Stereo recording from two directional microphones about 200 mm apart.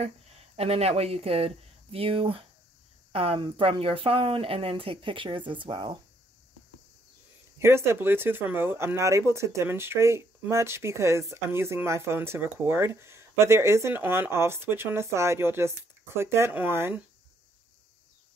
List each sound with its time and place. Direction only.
0.6 s speech: 30° right (ahead or behind)
7.5 s speech: 15° right (ahead or behind)